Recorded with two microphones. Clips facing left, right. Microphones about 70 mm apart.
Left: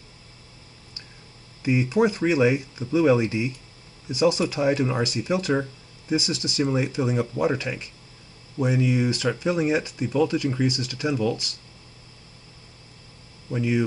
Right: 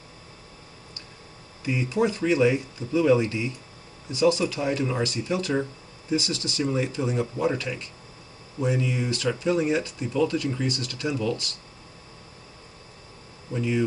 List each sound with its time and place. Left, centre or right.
1.6 s speech: centre
13.5 s speech: centre